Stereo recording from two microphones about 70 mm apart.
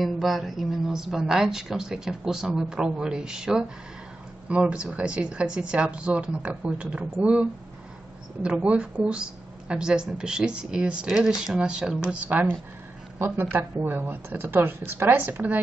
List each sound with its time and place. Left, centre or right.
0.0 s a woman's voice: centre
8.5 s a woman's voice: centre
13.2 s a woman's voice: right